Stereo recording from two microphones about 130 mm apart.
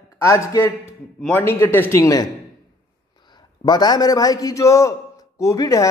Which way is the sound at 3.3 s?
35° left (ahead or behind).